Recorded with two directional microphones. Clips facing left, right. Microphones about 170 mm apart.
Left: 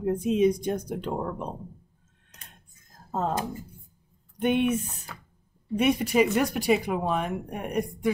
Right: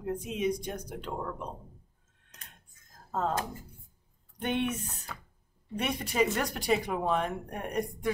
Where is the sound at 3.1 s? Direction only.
10° left (ahead or behind).